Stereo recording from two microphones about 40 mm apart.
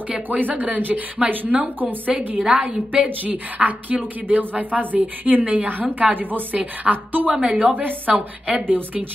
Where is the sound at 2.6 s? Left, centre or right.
Right.